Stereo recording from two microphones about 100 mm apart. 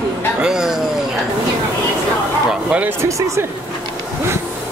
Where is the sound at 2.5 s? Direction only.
10° right (ahead or behind).